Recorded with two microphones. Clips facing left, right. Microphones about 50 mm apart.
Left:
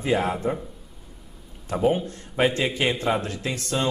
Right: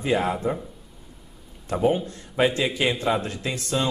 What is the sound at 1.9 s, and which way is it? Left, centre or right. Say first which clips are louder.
Speech: left 1 dB; left.